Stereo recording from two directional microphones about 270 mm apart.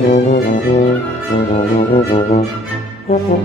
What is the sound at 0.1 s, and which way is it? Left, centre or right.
Brass instrument, left.